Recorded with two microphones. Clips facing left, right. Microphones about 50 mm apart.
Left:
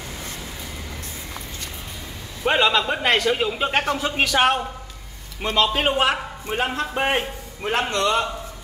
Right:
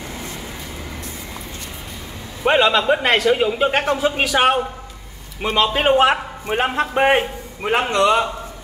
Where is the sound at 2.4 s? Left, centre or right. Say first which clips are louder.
Right 4 dB; centre.